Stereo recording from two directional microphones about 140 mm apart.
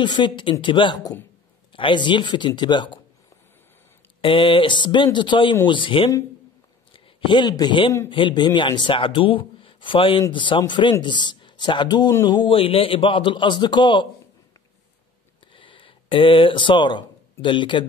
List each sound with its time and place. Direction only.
0.0 s speech: 35° left (ahead or behind)
4.2 s speech: 40° left (ahead or behind)
15.5 s speech: 35° left (ahead or behind)